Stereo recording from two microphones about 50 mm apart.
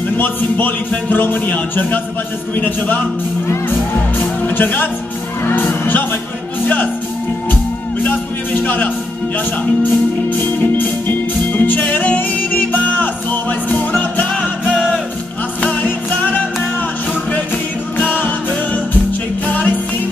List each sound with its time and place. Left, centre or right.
0.2 s speech: left
4.2 s music: left
5.4 s speech: left
8.0 s music: left
10.3 s music: left
17.9 s music: left